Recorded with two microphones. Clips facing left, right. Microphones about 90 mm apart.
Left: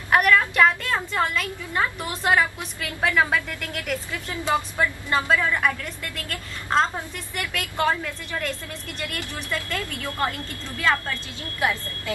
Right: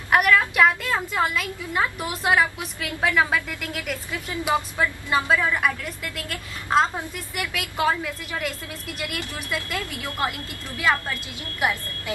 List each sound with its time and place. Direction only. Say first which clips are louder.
0.1 s a woman's voice: even; 5° right (ahead or behind)